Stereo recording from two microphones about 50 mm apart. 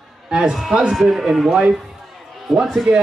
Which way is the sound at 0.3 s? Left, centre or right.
Centre.